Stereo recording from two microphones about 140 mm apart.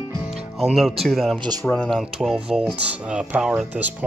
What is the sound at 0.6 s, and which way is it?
Speech, centre (ahead or behind).